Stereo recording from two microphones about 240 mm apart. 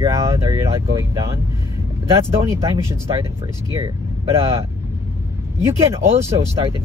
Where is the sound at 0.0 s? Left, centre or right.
Centre.